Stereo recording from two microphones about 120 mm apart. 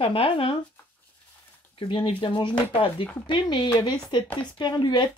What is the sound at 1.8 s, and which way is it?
Speech, 45° left (ahead or behind).